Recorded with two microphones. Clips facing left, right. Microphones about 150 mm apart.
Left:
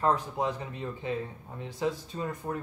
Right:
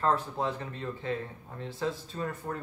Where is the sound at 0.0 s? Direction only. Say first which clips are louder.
Left 1 dB; 15° left (ahead or behind).